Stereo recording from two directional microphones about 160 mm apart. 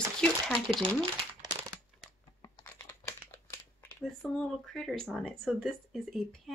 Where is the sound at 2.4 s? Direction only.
20° left (ahead or behind).